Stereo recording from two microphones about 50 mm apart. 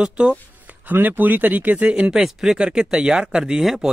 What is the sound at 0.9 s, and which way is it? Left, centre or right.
Speech, right.